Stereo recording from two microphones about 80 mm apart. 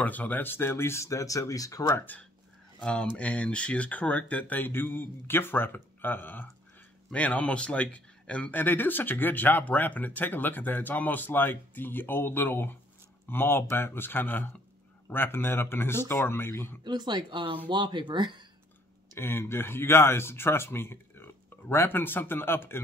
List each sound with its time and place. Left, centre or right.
0.0 s speech: centre; by 2.0 s left
2.0 s a man's voice: left
16.8 s speech: right
17.6 s speech: right
19.1 s a man's voice: left